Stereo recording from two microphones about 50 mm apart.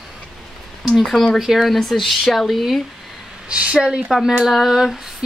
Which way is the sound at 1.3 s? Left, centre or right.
Centre.